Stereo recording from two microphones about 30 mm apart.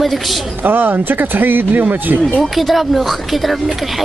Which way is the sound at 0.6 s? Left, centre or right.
Right.